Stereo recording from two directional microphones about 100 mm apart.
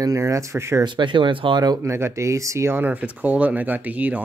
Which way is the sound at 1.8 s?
30° right (ahead or behind).